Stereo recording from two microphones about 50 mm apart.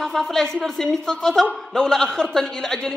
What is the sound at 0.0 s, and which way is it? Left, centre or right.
A woman's voice, centre.